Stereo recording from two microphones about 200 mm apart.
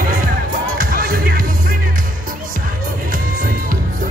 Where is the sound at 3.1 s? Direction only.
45° right (ahead or behind).